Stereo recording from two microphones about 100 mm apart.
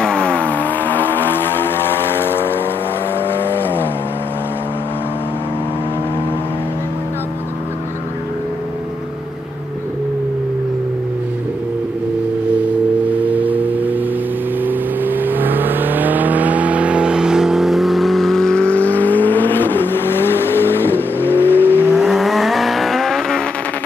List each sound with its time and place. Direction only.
0.0 s vehicle: 10° left (ahead or behind)
3.3 s vehicle: 20° left (ahead or behind)
13.2 s music: 15° right (ahead or behind)
14.6 s vehicle: 20° right (ahead or behind); by 21.8 s 20° left (ahead or behind)
22.0 s vehicle: centre (ahead or behind)